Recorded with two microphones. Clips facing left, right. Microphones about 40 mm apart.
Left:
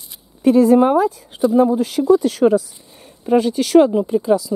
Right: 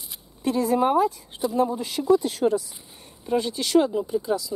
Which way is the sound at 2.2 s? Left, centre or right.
Left.